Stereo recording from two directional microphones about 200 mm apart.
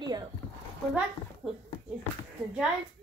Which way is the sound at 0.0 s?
20° right (ahead or behind).